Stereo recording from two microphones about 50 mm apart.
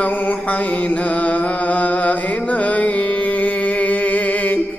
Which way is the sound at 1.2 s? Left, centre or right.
Left.